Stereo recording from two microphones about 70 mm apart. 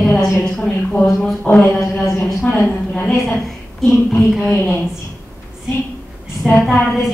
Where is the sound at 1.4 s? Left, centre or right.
Centre.